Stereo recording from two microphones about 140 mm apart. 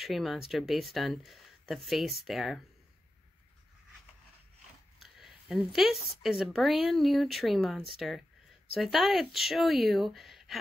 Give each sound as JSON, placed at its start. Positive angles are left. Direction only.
{"t": 0.0, "sound": "speech", "side_deg": 0}
{"t": 5.0, "sound": "a sound", "side_deg": 0}
{"t": 6.2, "sound": "speech", "side_deg": 0}